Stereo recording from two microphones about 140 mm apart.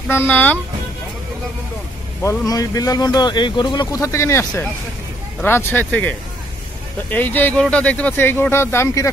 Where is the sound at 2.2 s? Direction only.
20° left (ahead or behind).